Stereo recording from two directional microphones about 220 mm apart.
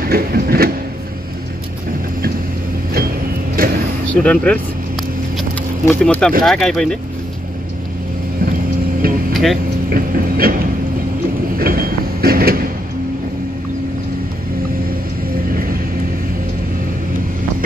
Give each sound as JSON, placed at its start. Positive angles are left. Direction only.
{"t": 0.1, "sound": "printer", "side_deg": -45}
{"t": 3.6, "sound": "vehicle", "side_deg": -40}
{"t": 4.1, "sound": "speech", "side_deg": 5}
{"t": 5.9, "sound": "speech", "side_deg": 5}
{"t": 9.3, "sound": "vehicle", "side_deg": 0}
{"t": 9.8, "sound": "a sound", "side_deg": -40}
{"t": 11.5, "sound": "train", "side_deg": -40}